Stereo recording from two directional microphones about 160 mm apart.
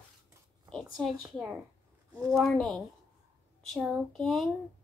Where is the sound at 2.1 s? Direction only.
20° right (ahead or behind).